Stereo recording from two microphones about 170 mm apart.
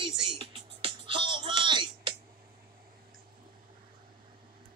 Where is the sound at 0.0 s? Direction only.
30° right (ahead or behind).